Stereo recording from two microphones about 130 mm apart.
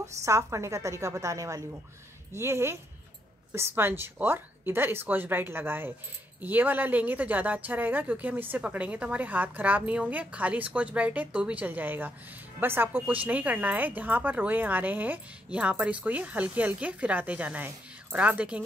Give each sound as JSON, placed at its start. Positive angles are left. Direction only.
{"t": 0.0, "sound": "a woman's voice", "side_deg": -25}